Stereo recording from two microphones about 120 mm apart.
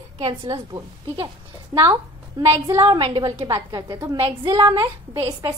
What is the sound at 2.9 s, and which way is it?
Speech, 40° right (ahead or behind).